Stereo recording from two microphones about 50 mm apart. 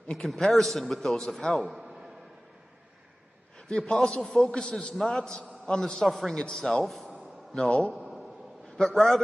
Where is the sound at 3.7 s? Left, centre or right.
Centre.